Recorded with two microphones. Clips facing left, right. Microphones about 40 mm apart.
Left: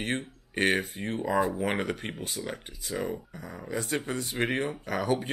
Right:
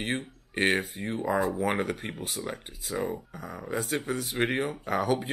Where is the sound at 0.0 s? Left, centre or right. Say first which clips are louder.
Even; centre.